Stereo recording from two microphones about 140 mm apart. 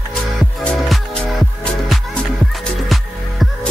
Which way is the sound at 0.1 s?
Centre (ahead or behind).